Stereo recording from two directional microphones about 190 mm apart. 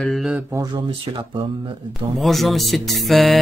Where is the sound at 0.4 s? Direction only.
15° right (ahead or behind).